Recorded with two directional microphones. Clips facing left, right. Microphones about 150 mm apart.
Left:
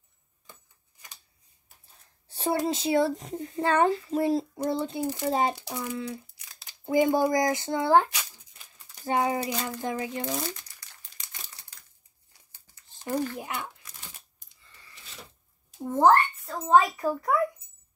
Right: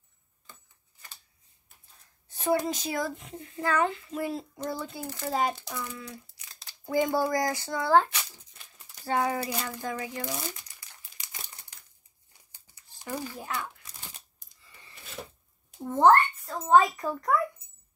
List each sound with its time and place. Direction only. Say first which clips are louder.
0.5 s a sound: left 1 dB; 15° left (ahead or behind)
2.2 s speech: even; 30° left (ahead or behind)
5.0 s a child's voice: left 2 dB; 15° left (ahead or behind)
13.4 s a child's voice: even; 20° left (ahead or behind)
15.9 s a child's voice: even; 5° left (ahead or behind)